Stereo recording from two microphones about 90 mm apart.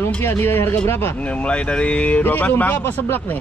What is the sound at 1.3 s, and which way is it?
A man's voice, 15° left (ahead or behind).